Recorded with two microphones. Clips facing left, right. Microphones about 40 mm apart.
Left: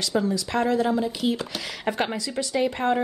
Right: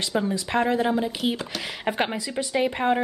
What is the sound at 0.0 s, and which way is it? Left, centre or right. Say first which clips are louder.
A woman's voice: left 1 dB; right.